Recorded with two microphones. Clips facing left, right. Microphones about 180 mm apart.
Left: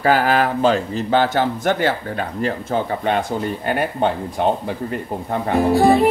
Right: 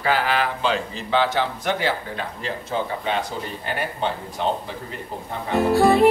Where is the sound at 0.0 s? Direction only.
45° left (ahead or behind).